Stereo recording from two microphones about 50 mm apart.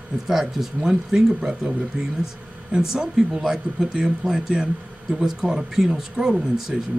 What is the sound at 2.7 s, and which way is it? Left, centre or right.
Speech, centre.